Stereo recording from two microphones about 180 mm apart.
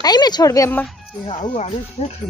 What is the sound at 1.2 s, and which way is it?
Speech, 35° left (ahead or behind).